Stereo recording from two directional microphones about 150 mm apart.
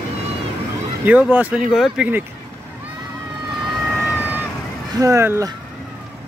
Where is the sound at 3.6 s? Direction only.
Centre (ahead or behind).